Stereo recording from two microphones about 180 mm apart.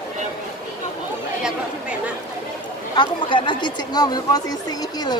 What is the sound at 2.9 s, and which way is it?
Speech, 25° left (ahead or behind).